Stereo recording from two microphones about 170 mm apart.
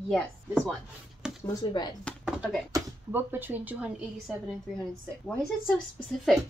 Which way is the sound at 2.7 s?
10° right (ahead or behind).